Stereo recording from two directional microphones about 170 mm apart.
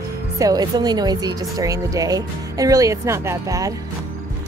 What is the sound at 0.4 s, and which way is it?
A woman's voice, 20° right (ahead or behind).